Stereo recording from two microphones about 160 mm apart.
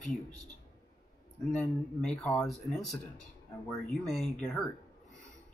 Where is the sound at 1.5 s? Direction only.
5° left (ahead or behind).